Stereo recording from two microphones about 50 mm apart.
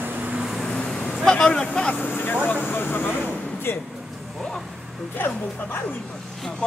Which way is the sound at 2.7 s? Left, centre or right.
Left.